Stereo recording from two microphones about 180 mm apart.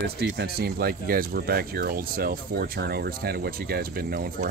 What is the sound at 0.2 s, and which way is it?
Speech, 60° right (ahead or behind).